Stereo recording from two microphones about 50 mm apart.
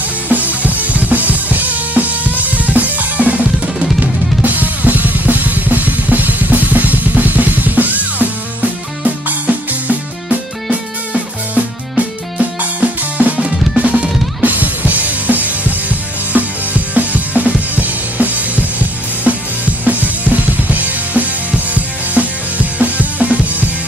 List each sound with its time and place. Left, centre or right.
0.3 s drum kit: right
9.0 s music: right
12.4 s drum: right
14.4 s drum kit: right